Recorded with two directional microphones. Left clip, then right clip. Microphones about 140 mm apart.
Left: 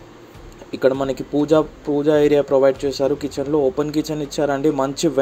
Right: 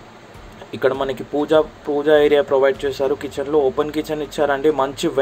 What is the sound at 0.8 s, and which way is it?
Speech, 35° left (ahead or behind).